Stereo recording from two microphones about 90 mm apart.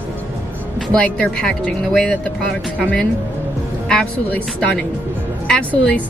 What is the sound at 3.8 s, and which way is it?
Speech, 10° left (ahead or behind).